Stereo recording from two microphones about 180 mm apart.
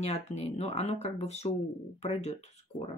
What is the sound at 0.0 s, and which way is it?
Speech, 35° left (ahead or behind).